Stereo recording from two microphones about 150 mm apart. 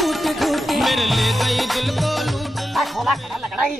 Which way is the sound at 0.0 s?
Centre (ahead or behind).